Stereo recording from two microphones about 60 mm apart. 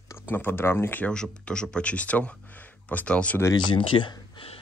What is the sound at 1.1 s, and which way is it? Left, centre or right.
Speech, centre.